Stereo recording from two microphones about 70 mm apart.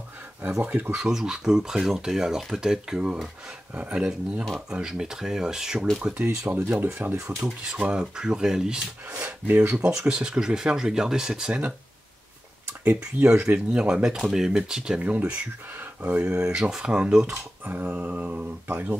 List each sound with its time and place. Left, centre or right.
0.7 s speech: right
0.9 s speech: centre; by 7.2 s right
7.4 s speech: centre
9.2 s speech: right
9.8 s speech: centre
13.2 s speech: centre
15.0 s speech: centre
17.6 s speech: right